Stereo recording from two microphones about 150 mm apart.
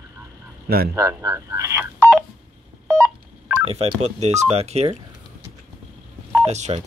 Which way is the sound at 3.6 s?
45° right (ahead or behind).